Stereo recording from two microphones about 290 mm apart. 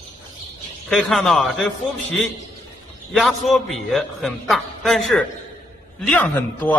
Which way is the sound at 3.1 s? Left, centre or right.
Centre.